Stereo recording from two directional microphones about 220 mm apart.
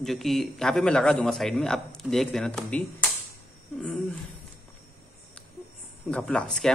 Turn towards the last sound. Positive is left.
turn(degrees=5)  # may be behind; listen again after turning